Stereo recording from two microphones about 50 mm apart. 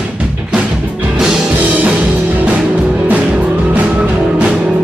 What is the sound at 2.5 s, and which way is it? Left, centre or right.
Music, right.